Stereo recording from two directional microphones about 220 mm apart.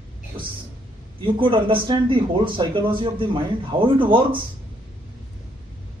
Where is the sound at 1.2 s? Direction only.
25° right (ahead or behind).